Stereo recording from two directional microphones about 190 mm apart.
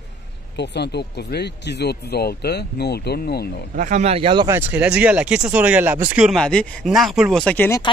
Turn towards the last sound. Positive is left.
turn(degrees=10)  # may be behind; listen again after turning